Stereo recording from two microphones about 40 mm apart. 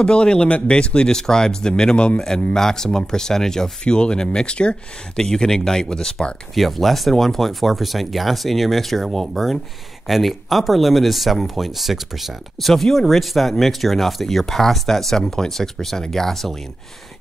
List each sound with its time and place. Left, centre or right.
0.0 s a man's voice: left
3.8 s a man's voice: left
5.2 s speech: centre
6.5 s speech: centre
12.5 s speech: centre